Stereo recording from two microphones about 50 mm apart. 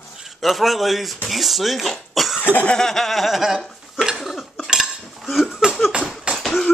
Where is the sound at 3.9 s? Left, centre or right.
Centre.